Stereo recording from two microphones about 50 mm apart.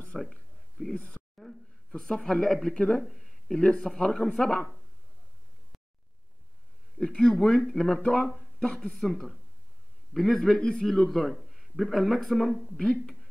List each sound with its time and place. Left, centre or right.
0.2 s a sound: centre
0.9 s a sound: left
2.2 s speech: centre
3.1 s speech: centre
7.0 s a man's voice: centre
10.5 s a man's voice: centre